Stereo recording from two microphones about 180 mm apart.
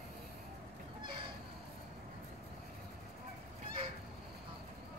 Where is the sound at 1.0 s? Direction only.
25° right (ahead or behind).